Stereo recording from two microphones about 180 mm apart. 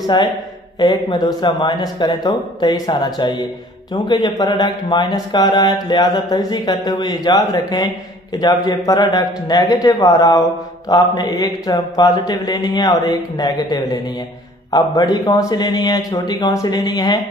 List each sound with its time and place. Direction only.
0.0 s a man's voice: 25° left (ahead or behind)